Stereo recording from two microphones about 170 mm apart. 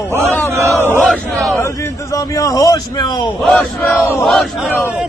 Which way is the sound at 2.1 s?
20° left (ahead or behind).